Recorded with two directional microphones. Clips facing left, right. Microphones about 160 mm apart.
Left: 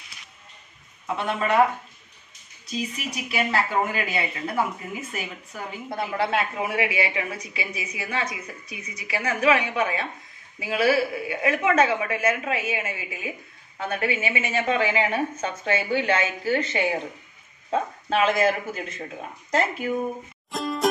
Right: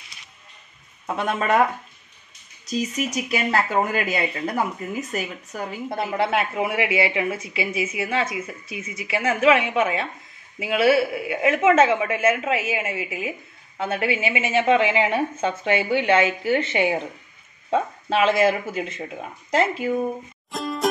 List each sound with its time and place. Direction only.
1.0 s speech: 45° right (ahead or behind)
2.6 s speech: 40° right (ahead or behind)
5.9 s a woman's voice: 25° right (ahead or behind)
18.1 s a woman's voice: 25° right (ahead or behind)
20.5 s music: centre (ahead or behind)